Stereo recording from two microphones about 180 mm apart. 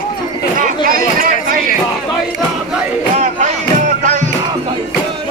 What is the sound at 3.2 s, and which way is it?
Music, 40° right (ahead or behind).